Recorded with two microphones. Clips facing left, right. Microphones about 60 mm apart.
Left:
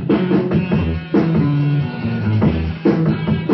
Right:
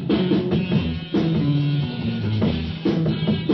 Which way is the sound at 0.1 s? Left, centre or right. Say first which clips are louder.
Left 4 dB; left.